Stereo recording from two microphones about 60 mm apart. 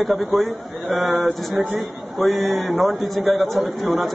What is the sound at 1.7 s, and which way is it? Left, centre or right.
Speech, right.